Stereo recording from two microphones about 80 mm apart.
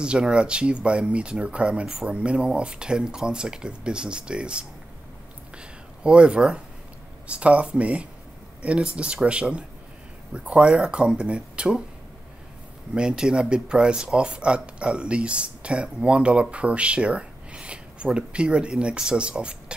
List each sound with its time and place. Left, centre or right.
0.0 s speech: centre
5.6 s a sound: centre
7.2 s speech: centre
12.9 s speech: centre